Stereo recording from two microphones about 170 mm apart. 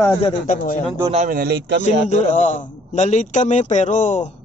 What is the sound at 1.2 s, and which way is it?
Speech, 65° right (ahead or behind).